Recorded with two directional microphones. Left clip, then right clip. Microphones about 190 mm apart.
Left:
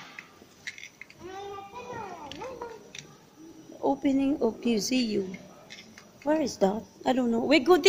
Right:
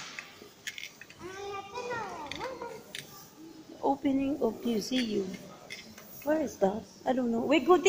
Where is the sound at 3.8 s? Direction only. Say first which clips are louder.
Left 3 dB; 35° left (ahead or behind).